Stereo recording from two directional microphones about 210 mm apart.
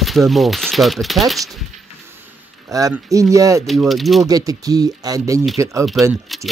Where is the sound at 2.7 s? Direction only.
15° right (ahead or behind).